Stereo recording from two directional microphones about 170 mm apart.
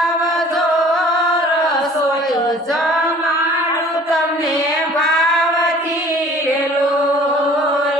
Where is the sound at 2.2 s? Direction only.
Centre (ahead or behind).